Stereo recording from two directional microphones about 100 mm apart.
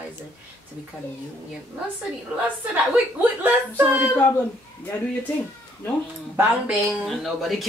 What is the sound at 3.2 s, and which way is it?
Speech, 15° right (ahead or behind).